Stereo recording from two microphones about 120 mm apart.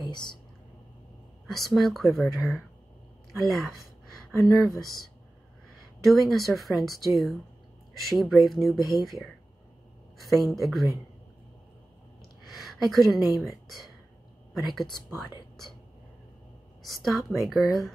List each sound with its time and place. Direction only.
0.0 s speech: 40° left (ahead or behind)
1.7 s a woman's voice: centre (ahead or behind)
6.0 s speech: centre (ahead or behind)
12.4 s a woman's voice: centre (ahead or behind)
16.8 s speech: centre (ahead or behind)